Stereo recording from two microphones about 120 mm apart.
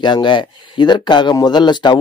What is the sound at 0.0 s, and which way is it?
Speech, 40° left (ahead or behind).